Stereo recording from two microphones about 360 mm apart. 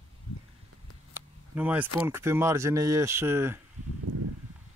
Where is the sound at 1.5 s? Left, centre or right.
Centre.